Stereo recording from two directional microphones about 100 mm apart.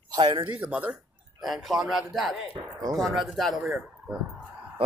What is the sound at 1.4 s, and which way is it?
A man's voice, centre (ahead or behind).